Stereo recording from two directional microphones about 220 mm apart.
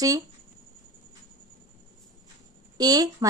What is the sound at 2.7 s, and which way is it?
Speech, 15° right (ahead or behind).